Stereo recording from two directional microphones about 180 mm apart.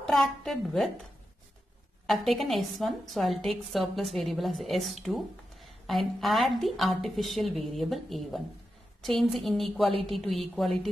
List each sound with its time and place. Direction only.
0.0 s a woman's voice: 5° left (ahead or behind)
2.0 s a woman's voice: centre (ahead or behind)
9.8 s a woman's voice: 30° right (ahead or behind)
10.1 s a woman's voice: centre (ahead or behind)